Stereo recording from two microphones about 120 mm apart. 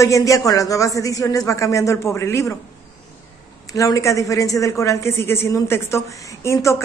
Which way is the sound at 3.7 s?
30° left (ahead or behind).